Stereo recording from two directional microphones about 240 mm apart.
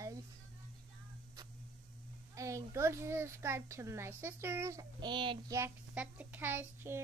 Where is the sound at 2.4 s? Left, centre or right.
Centre.